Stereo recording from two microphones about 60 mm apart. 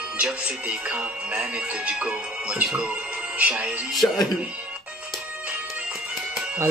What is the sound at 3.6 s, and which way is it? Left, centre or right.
Speech, right.